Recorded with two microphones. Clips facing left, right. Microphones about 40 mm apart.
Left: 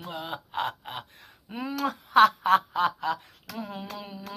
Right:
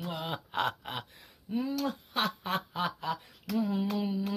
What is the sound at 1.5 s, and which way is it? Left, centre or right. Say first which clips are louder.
Snicker: right 3 dB; left.